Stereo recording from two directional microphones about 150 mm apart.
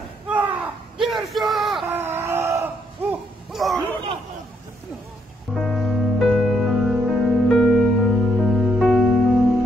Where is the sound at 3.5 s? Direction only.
Centre (ahead or behind).